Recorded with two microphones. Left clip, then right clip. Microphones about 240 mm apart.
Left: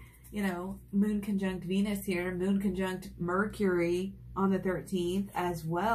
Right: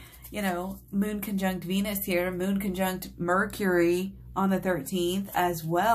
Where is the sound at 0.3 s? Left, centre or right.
Right.